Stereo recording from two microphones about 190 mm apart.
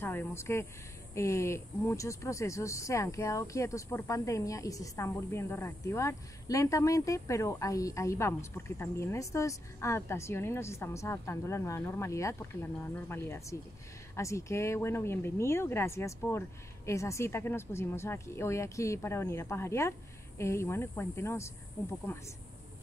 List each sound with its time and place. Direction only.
0.0 s speech: 10° left (ahead or behind)